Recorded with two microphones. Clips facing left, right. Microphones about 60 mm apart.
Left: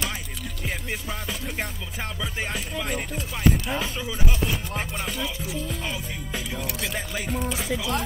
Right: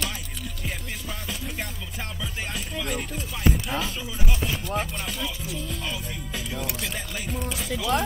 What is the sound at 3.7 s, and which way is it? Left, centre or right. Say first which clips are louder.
Speech: left 1 dB; centre.